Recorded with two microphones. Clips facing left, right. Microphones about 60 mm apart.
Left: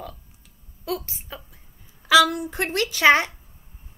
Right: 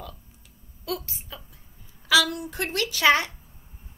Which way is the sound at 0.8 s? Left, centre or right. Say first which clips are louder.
Left 3 dB; left.